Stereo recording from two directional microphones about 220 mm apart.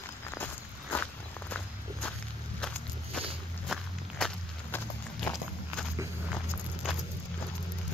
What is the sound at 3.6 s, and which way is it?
Walk, centre (ahead or behind).